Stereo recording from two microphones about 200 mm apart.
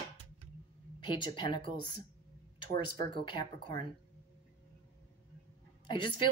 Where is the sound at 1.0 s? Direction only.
25° left (ahead or behind).